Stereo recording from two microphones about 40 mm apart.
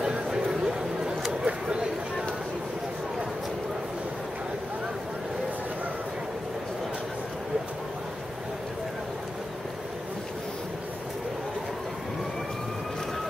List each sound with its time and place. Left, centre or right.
0.0 s chatter: centre